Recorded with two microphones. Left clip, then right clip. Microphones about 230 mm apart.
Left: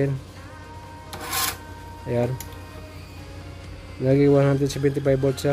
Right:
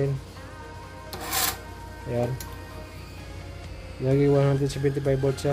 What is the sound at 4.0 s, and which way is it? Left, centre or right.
Speech, left.